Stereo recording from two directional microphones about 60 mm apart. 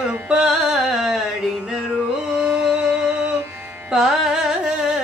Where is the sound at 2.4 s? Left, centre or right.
Centre.